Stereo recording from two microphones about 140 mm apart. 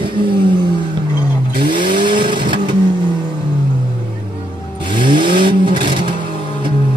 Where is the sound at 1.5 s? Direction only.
35° right (ahead or behind).